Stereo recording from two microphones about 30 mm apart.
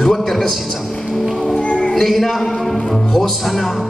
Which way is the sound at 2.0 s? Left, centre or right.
Centre.